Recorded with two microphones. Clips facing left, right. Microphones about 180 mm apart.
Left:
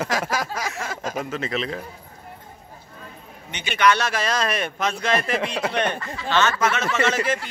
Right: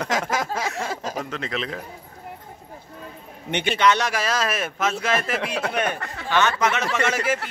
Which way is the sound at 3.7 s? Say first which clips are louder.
Left 2 dB; 20° right (ahead or behind).